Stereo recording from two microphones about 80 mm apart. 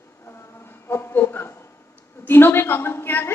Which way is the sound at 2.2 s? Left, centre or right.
Left.